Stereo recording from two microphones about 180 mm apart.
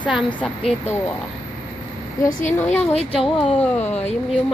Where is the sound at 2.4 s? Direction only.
35° left (ahead or behind).